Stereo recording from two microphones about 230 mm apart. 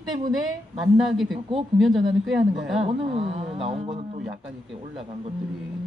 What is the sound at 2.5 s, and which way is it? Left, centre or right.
A man's voice, right.